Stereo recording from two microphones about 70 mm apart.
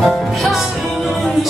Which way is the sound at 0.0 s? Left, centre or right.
Centre.